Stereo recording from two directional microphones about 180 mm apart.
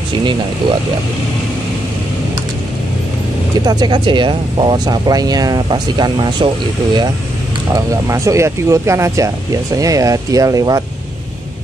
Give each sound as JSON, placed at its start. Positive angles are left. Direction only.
{"t": 3.6, "sound": "speech", "side_deg": -25}
{"t": 7.7, "sound": "speech", "side_deg": -20}